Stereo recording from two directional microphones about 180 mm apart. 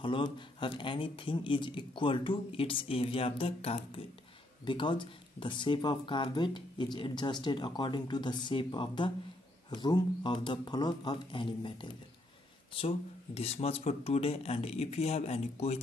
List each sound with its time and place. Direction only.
0.0 s speech: 25° left (ahead or behind)